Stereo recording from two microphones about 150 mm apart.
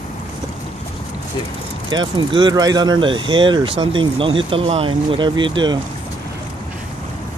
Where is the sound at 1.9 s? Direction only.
30° right (ahead or behind).